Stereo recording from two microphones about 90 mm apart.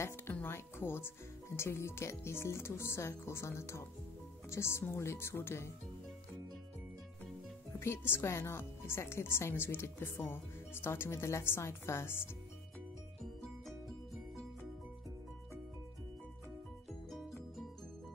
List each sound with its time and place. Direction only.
0.3 s speech: 25° left (ahead or behind)
7.8 s speech: 25° left (ahead or behind)